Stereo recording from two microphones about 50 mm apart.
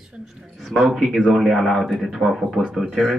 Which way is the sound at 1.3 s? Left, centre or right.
Centre.